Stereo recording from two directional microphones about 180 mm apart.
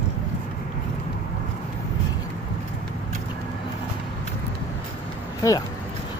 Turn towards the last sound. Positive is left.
turn(degrees=15)  # may be behind; listen again after turning